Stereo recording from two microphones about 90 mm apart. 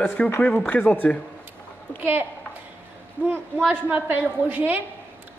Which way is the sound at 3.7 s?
20° right (ahead or behind).